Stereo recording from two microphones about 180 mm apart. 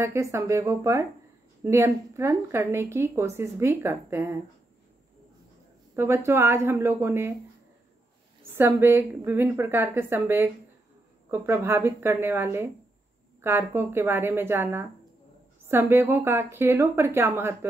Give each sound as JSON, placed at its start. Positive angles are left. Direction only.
{"t": 0.0, "sound": "speech", "side_deg": -15}
{"t": 5.9, "sound": "speech", "side_deg": -15}
{"t": 8.5, "sound": "speech", "side_deg": -10}